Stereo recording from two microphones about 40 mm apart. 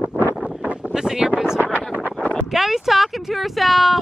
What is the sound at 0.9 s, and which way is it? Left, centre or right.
Wind noise, centre.